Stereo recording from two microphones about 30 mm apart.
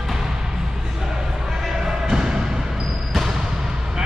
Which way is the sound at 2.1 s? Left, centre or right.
Right.